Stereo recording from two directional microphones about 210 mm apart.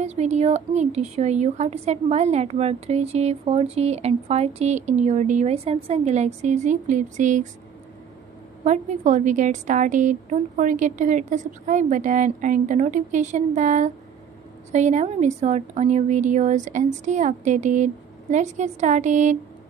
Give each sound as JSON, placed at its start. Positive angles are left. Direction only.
{"t": 0.0, "sound": "a woman's voice", "side_deg": -30}
{"t": 8.6, "sound": "a woman's voice", "side_deg": -35}